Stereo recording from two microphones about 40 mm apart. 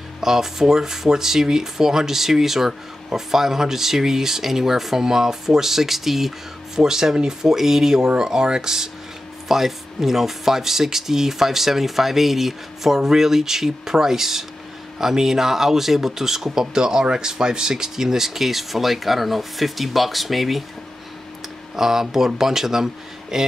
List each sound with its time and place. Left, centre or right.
0.2 s speech: centre
21.7 s speech: centre